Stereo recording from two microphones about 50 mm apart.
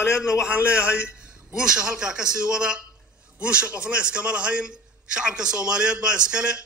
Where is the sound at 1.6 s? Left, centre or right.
Centre.